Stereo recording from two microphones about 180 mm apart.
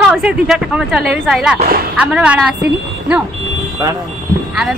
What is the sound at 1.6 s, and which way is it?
Speech, 55° right (ahead or behind).